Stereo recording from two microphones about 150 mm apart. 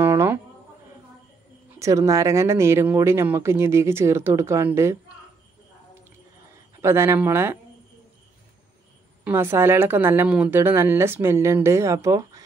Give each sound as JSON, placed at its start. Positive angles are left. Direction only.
{"t": 0.0, "sound": "a sound", "side_deg": -15}
{"t": 1.8, "sound": "speech", "side_deg": -20}
{"t": 6.8, "sound": "speech", "side_deg": -20}
{"t": 9.2, "sound": "speech", "side_deg": -15}